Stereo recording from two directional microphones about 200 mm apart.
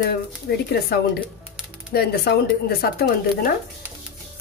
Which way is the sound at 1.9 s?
50° left (ahead or behind).